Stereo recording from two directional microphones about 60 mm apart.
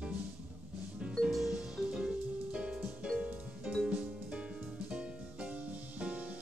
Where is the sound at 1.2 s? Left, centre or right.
Centre.